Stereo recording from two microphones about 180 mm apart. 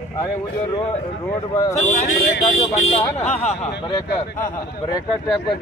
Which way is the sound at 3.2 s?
35° left (ahead or behind).